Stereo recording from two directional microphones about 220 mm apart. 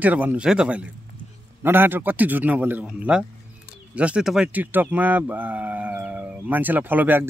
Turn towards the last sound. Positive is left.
turn(degrees=-10)  # may be behind; listen again after turning